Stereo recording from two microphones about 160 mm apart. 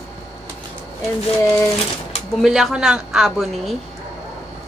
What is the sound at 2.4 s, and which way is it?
A woman's voice, 5° right (ahead or behind).